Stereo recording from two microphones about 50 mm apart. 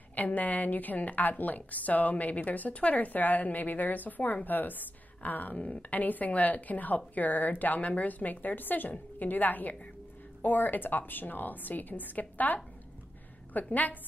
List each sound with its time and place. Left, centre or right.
0.1 s a woman's voice: left